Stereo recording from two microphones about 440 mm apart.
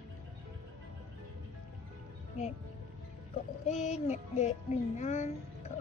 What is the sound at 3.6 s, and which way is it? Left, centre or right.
Music, centre.